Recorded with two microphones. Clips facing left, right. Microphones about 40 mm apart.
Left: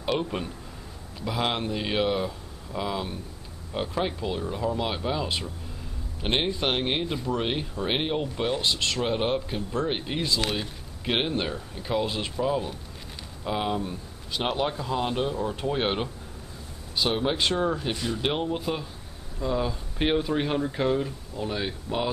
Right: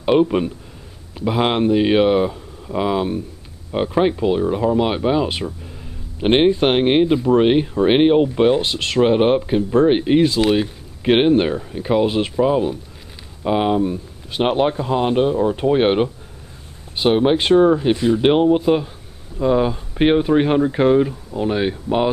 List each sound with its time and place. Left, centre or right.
0.0 s a man's voice: right